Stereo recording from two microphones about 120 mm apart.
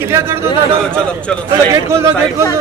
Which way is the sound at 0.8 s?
10° left (ahead or behind).